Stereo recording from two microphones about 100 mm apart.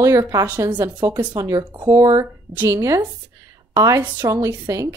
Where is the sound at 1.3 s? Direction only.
40° right (ahead or behind).